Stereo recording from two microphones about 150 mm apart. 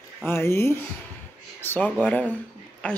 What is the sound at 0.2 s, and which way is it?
Speech, 15° left (ahead or behind).